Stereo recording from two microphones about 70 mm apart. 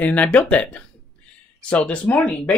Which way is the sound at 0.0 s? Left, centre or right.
Centre.